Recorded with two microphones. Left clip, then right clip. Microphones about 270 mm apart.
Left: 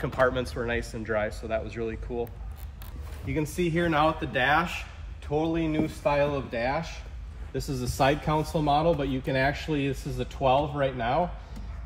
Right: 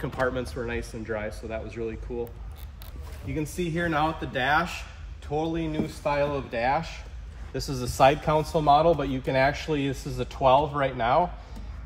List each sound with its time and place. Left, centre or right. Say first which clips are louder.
0.0 s speech: left 3 dB; centre
3.3 s speech: left 2 dB; centre
6.3 s speech: right 3 dB; centre